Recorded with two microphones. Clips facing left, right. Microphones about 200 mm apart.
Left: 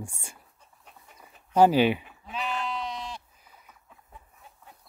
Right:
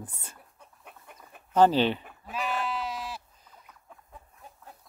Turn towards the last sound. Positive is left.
turn(degrees=-5)  # may be behind; listen again after turning